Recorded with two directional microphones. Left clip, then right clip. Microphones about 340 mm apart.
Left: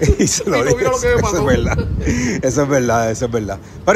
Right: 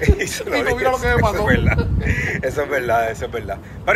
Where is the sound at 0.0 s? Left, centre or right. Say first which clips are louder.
Left 4 dB; centre.